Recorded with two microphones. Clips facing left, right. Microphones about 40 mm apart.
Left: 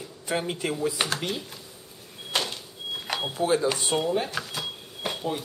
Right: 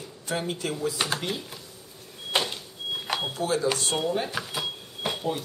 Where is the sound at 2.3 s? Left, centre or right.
Centre.